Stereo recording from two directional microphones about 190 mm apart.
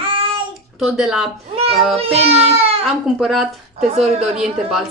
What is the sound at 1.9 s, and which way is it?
Speech, 30° right (ahead or behind).